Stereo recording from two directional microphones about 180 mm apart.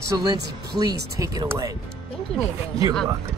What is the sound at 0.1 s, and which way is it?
Speech, 20° right (ahead or behind).